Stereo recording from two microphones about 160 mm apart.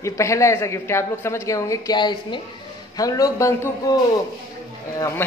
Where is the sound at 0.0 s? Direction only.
20° left (ahead or behind).